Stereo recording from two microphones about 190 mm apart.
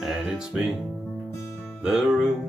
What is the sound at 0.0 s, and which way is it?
Speech, 5° right (ahead or behind).